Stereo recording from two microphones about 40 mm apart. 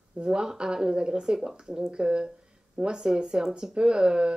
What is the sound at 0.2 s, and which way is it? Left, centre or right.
A man's voice, right.